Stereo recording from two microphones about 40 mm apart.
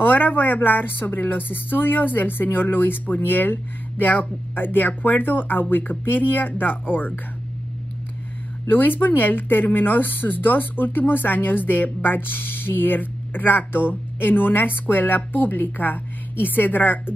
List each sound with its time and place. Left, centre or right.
0.0 s a woman's voice: left
8.6 s speech: left